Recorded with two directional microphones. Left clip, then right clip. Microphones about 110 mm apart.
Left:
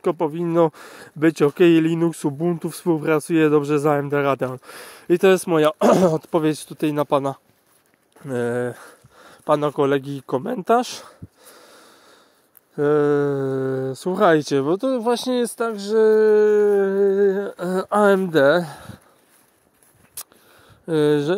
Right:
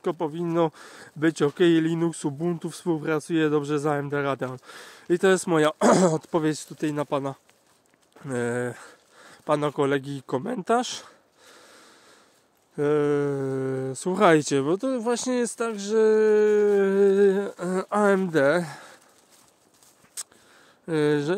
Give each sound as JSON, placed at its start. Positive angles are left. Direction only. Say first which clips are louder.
{"t": 0.0, "sound": "speech", "louder": "left 6 dB", "side_deg": 45}
{"t": 5.3, "sound": "speech", "louder": "left 4 dB", "side_deg": 15}
{"t": 6.4, "sound": "speech", "louder": "left 5 dB", "side_deg": 35}
{"t": 6.7, "sound": "speech", "louder": "left 7 dB", "side_deg": 60}
{"t": 8.3, "sound": "speech", "louder": "left 4 dB", "side_deg": 25}
{"t": 14.1, "sound": "speech", "louder": "left 3 dB", "side_deg": 0}
{"t": 14.8, "sound": "speech", "louder": "left 5 dB", "side_deg": 20}
{"t": 16.3, "sound": "speech", "louder": "left 4 dB", "side_deg": 0}
{"t": 16.9, "sound": "a sound", "louder": "left 2 dB", "side_deg": -30}
{"t": 17.6, "sound": "speech", "louder": "left 4 dB", "side_deg": 15}
{"t": 17.8, "sound": "speech", "louder": "left 6 dB", "side_deg": 30}
{"t": 20.2, "sound": "a sound", "louder": "right 1 dB", "side_deg": 20}
{"t": 20.8, "sound": "speech", "louder": "left 5 dB", "side_deg": 30}